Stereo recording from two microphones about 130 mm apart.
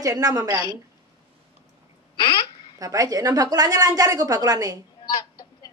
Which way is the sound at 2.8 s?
30° right (ahead or behind).